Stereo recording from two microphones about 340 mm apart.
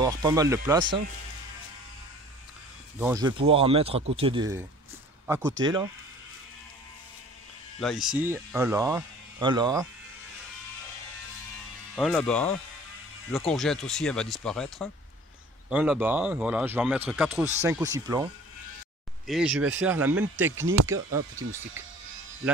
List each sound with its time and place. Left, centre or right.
0.0 s speech: centre
3.0 s speech: centre
7.8 s speech: centre
11.9 s speech: centre
20.5 s speech: right